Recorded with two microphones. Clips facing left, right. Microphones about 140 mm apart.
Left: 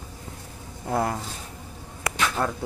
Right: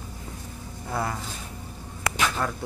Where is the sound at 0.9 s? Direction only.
45° left (ahead or behind).